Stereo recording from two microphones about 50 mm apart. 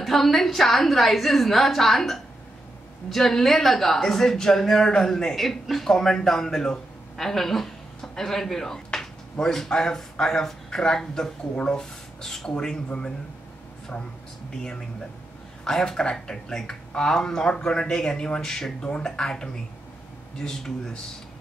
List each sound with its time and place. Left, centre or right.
0.0 s a woman's voice: centre
14.5 s speech: centre